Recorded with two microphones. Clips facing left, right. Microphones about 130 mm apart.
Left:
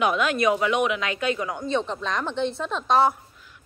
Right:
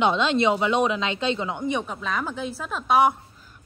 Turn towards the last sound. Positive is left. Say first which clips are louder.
# right 1 dB
turn(degrees=-10)  # may be behind; listen again after turning